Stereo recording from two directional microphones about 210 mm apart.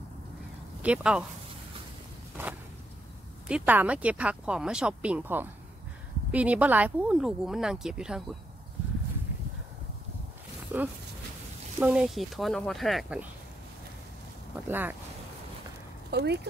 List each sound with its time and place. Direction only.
0.8 s speech: 5° right (ahead or behind)
3.4 s speech: 5° right (ahead or behind)
10.7 s speech: 10° right (ahead or behind)
14.7 s speech: 10° right (ahead or behind)
16.1 s speech: 50° right (ahead or behind)